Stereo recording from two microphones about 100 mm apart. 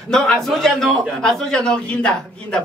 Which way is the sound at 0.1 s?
5° left (ahead or behind).